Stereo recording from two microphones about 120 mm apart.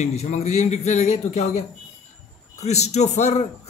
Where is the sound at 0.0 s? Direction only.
65° left (ahead or behind).